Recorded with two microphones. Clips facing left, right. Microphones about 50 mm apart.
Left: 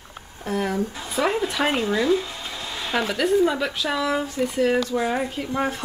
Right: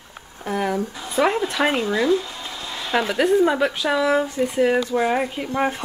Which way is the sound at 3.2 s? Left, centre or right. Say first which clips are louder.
Right 3 dB; centre.